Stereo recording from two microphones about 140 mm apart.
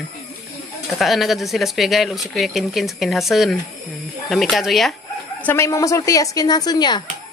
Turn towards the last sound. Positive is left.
turn(degrees=30)  # may be behind; listen again after turning